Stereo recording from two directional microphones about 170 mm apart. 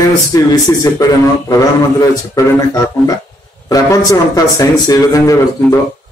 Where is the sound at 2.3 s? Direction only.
20° left (ahead or behind).